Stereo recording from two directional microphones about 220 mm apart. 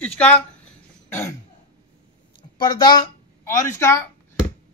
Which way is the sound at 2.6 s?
20° left (ahead or behind).